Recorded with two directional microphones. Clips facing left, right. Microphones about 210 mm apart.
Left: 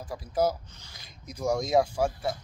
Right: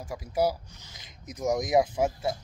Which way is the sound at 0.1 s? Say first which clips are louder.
Even; 10° right (ahead or behind).